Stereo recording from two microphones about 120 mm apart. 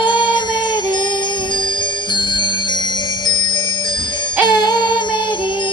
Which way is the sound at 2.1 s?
40° left (ahead or behind).